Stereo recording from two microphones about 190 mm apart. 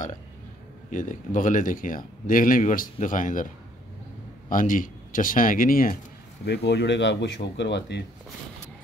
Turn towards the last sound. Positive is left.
turn(degrees=65)  # may be behind; listen again after turning